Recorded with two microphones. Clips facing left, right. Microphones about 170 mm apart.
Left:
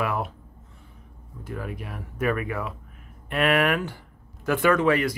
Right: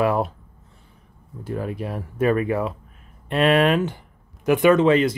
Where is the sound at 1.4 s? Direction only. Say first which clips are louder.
Right 7 dB; 30° right (ahead or behind).